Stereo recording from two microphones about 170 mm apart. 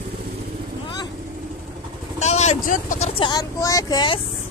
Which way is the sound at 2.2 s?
40° left (ahead or behind).